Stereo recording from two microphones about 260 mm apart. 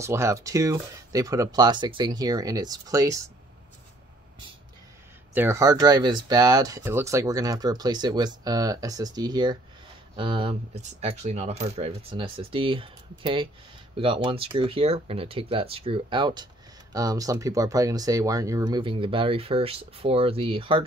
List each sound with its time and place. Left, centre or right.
0.0 s speech: centre
5.3 s speech: centre